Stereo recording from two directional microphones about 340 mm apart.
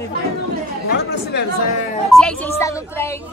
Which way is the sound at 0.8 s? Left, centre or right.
Left.